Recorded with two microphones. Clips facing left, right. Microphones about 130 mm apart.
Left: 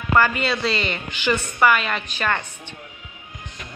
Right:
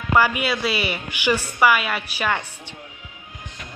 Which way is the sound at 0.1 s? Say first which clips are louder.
Even; 10° right (ahead or behind).